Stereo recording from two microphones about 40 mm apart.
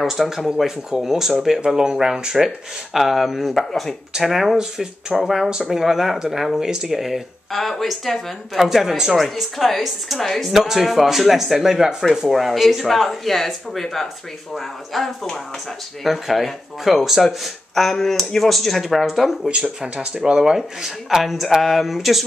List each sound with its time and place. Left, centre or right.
0.0 s speech: centre
2.4 s speech: centre
4.1 s speech: centre
8.6 s speech: centre
9.1 s speech: centre
19.4 s speech: right
20.3 s speech: centre